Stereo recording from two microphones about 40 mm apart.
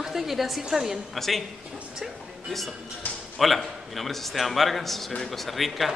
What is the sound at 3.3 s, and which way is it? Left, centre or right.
A man's voice, centre.